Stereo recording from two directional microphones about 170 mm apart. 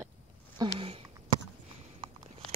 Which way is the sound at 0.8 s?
35° right (ahead or behind).